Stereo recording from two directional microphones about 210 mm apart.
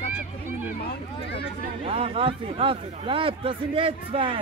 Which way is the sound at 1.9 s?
25° right (ahead or behind).